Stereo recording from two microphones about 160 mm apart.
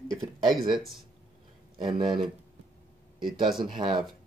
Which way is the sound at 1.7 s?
30° right (ahead or behind).